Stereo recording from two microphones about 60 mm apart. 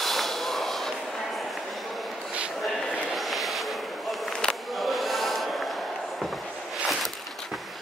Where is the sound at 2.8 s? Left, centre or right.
Left.